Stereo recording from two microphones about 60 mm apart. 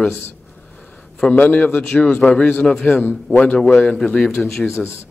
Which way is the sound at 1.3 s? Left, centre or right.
Left.